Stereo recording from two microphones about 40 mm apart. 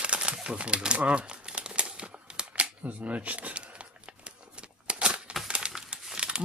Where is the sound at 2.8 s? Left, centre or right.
Right.